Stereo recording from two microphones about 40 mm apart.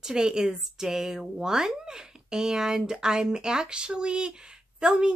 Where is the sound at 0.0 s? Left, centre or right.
Centre.